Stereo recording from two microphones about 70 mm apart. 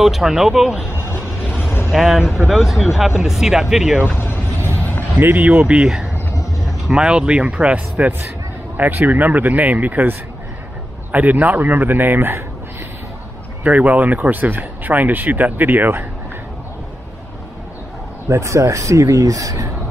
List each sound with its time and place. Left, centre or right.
0.0 s speech: centre
0.8 s a sound: left
1.6 s vehicle: left
1.9 s speech: centre
4.6 s a sound: right
5.3 s speech: centre
5.8 s speech: centre; by 12.4 s right
13.7 s speech: right
18.3 s speech: right